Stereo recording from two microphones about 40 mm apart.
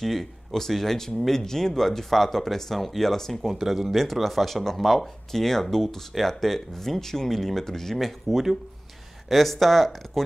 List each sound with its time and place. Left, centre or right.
0.0 s speech: centre